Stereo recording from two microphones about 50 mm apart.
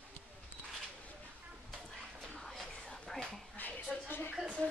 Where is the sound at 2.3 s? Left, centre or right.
Centre.